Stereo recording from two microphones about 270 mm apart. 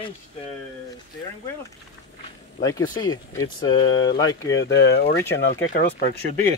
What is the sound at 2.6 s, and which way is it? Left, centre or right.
Speech, centre.